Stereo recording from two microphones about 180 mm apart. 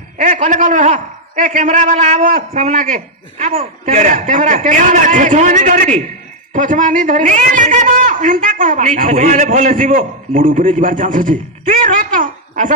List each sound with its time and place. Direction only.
0.2 s a man's voice: 45° right (ahead or behind)